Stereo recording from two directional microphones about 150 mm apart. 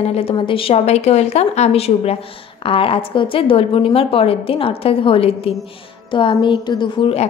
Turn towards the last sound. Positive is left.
turn(degrees=35)  # may be behind; listen again after turning